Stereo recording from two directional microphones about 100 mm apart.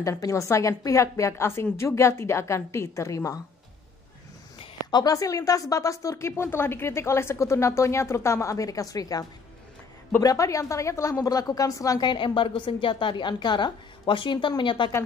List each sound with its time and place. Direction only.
0.0 s a woman's voice: 30° left (ahead or behind)
4.9 s a woman's voice: 35° left (ahead or behind)
10.2 s a woman's voice: 35° left (ahead or behind)
12.0 s a woman's voice: 55° left (ahead or behind)